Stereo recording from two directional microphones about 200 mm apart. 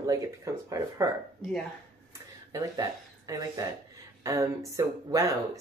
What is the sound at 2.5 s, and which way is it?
Speech, 15° right (ahead or behind).